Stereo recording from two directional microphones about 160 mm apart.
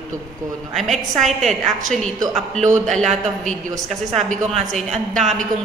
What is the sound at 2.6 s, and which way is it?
Speech, 50° right (ahead or behind).